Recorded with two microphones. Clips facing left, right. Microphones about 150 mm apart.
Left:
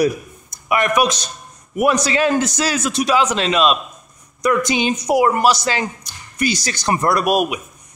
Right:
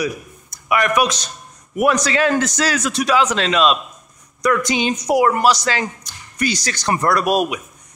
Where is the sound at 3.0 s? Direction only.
25° left (ahead or behind).